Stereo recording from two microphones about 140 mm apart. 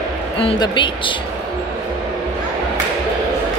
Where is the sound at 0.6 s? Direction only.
35° left (ahead or behind).